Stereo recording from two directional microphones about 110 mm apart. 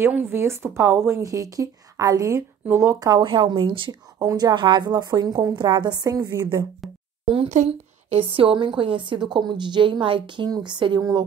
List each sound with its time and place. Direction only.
0.1 s a woman's voice: 20° right (ahead or behind)
3.3 s speech: 50° right (ahead or behind)
4.2 s a woman's voice: 35° right (ahead or behind)
6.3 s a woman's voice: 20° right (ahead or behind)
7.2 s speech: 70° right (ahead or behind); by 11.0 s 45° right (ahead or behind)
11.0 s a woman's voice: 30° right (ahead or behind)